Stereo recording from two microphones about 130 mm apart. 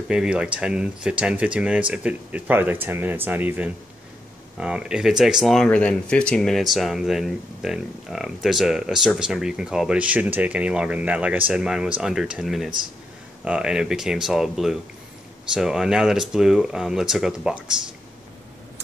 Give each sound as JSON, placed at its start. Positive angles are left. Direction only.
{"t": 0.1, "sound": "speech", "side_deg": -5}